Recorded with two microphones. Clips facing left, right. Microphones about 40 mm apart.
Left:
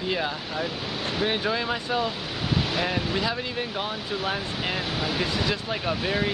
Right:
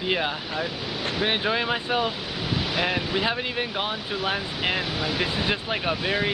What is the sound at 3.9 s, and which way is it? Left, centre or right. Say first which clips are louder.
Speech: right 1 dB; centre.